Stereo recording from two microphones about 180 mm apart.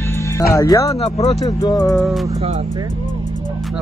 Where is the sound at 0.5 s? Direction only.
20° left (ahead or behind).